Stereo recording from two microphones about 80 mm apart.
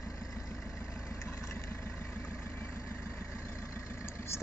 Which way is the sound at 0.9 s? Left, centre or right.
Left.